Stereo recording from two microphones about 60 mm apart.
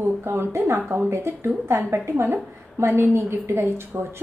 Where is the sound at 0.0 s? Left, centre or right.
Right.